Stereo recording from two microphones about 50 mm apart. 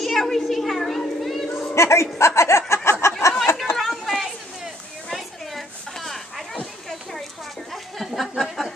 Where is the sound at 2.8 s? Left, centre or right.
Left.